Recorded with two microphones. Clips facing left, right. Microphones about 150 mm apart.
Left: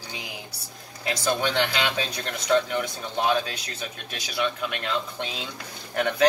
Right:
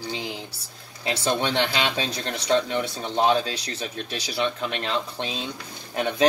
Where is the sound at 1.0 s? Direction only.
25° right (ahead or behind).